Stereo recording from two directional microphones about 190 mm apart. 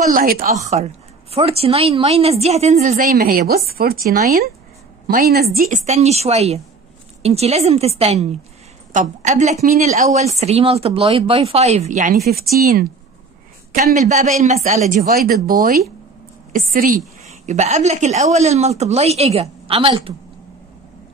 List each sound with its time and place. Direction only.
0.1 s a woman's voice: 50° right (ahead or behind)
1.3 s a woman's voice: 30° right (ahead or behind); by 5.8 s 55° right (ahead or behind)
5.9 s speech: 35° right (ahead or behind)
12.3 s a woman's voice: 55° right (ahead or behind)
13.9 s speech: 40° right (ahead or behind)
16.5 s a woman's voice: 50° right (ahead or behind)
17.3 s speech: 35° right (ahead or behind)